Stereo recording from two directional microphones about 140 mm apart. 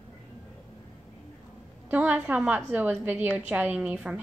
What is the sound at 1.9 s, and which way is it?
A woman's voice, 10° right (ahead or behind).